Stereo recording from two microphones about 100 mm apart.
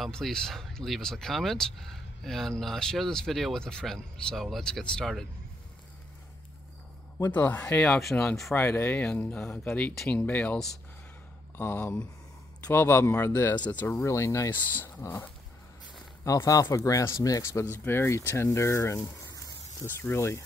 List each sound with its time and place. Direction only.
0.0 s speech: 5° left (ahead or behind)
7.3 s speech: 15° left (ahead or behind)
8.5 s speech: 25° left (ahead or behind)
13.9 s speech: 30° left (ahead or behind)
14.5 s speech: 20° left (ahead or behind)
16.3 s speech: 35° left (ahead or behind)
19.2 s a sound: 35° left (ahead or behind)